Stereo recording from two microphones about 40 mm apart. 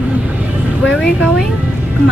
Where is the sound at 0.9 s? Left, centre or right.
Centre.